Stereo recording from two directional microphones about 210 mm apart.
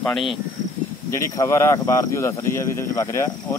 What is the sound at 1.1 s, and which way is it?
Speech, 15° left (ahead or behind).